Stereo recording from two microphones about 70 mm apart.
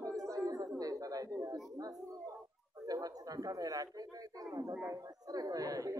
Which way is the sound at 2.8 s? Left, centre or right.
Right.